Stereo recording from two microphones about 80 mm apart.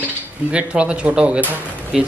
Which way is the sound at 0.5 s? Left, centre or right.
Centre.